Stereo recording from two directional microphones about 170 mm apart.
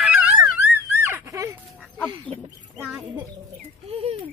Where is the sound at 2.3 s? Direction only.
5° left (ahead or behind).